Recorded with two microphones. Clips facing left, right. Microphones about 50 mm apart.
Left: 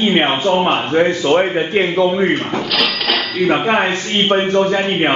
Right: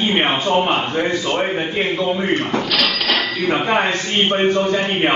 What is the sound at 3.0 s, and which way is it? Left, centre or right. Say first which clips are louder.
Dishes: left 3 dB; centre.